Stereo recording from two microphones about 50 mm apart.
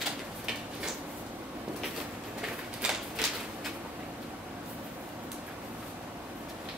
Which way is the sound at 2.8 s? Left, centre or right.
Centre.